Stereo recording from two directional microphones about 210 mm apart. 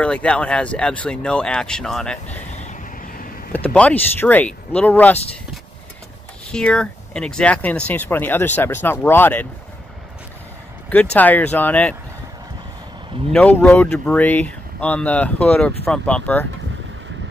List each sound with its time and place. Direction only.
0.0 s speech: 5° left (ahead or behind)
2.5 s vehicle: 35° left (ahead or behind)
3.5 s speech: 5° left (ahead or behind)
6.5 s speech: 5° left (ahead or behind)
11.1 s speech: 10° left (ahead or behind)
13.3 s speech: 5° left (ahead or behind)